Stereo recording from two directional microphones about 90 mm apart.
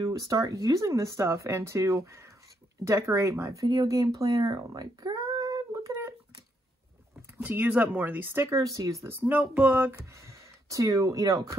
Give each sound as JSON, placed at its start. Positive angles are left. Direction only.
{"t": 0.0, "sound": "speech", "side_deg": -40}
{"t": 5.7, "sound": "a sound", "side_deg": -30}
{"t": 7.2, "sound": "speech", "side_deg": -20}
{"t": 8.5, "sound": "speech", "side_deg": -35}
{"t": 9.3, "sound": "speech", "side_deg": -15}
{"t": 9.9, "sound": "speech", "side_deg": -35}